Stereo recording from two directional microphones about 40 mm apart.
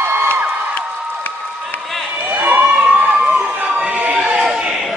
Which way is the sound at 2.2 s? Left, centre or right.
Right.